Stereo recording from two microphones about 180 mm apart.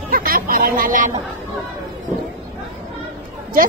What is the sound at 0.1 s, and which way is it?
Speech, 55° right (ahead or behind).